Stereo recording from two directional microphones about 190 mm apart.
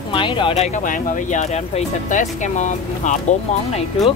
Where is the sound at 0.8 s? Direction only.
40° left (ahead or behind).